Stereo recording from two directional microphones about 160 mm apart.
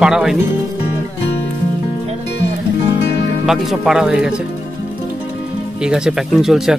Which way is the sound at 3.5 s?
Centre (ahead or behind).